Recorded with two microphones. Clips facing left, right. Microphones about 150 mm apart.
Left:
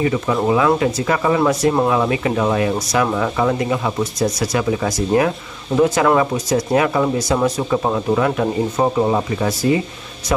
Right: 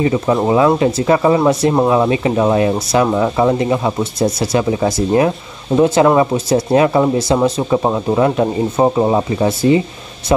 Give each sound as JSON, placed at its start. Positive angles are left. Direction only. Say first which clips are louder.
{"t": 0.0, "sound": "speech", "louder": "right 3 dB", "side_deg": -30}